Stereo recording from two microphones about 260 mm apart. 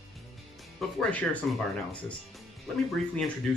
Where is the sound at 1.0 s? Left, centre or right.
Centre.